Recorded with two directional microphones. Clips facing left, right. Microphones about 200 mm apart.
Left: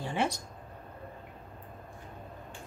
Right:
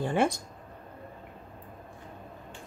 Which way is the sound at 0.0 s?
50° right (ahead or behind).